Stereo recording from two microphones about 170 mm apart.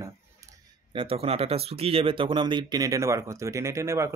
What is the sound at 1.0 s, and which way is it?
Speech, 35° right (ahead or behind).